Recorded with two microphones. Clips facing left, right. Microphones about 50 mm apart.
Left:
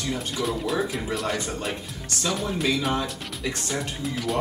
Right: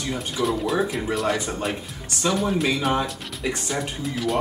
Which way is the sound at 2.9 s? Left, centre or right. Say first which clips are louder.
Right 3 dB; centre.